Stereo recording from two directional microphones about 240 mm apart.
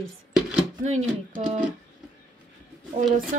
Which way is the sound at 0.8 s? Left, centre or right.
Right.